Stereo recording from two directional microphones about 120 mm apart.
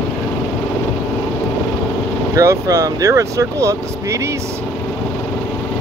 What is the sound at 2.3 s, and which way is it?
Speech, 25° right (ahead or behind).